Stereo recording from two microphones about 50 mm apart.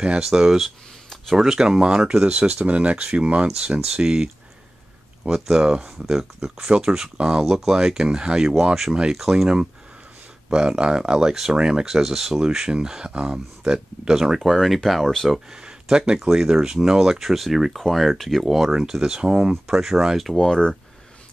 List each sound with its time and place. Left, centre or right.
0.2 s speech: centre
3.8 s speech: centre
10.5 s speech: centre
14.4 s speech: centre
15.6 s speech: centre
18.7 s speech: centre
20.3 s speech: centre